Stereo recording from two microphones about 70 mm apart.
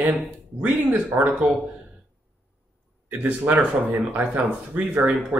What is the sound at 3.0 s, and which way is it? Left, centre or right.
Speech, right.